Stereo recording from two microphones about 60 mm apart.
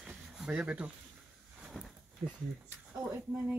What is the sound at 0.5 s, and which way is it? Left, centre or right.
Speech, centre.